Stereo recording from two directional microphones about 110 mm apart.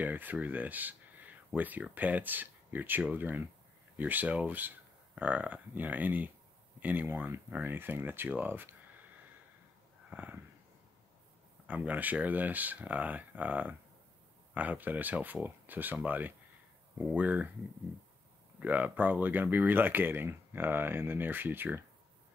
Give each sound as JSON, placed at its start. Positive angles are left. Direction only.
{"t": 0.0, "sound": "speech", "side_deg": -15}
{"t": 10.0, "sound": "a sound", "side_deg": -15}
{"t": 11.6, "sound": "speech", "side_deg": -10}
{"t": 18.6, "sound": "speech", "side_deg": -15}